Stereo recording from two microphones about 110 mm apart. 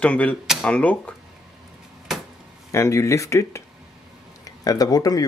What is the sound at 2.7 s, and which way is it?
Speech, 25° left (ahead or behind).